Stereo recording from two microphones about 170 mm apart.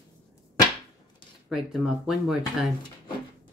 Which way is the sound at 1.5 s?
Centre (ahead or behind).